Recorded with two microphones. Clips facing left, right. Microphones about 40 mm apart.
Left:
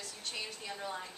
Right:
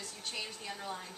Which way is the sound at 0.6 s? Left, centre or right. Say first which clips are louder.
Left 1 dB; centre.